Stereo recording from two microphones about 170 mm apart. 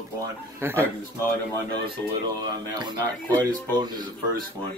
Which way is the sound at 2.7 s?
25° right (ahead or behind).